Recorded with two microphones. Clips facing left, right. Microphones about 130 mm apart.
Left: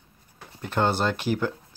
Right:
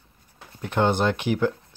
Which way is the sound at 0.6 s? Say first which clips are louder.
Right 2 dB; 15° right (ahead or behind).